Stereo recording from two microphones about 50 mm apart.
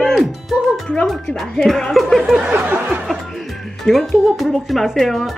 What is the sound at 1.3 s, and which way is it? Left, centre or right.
A woman's voice, centre.